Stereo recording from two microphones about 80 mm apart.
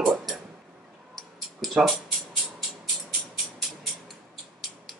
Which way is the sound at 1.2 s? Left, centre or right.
Centre.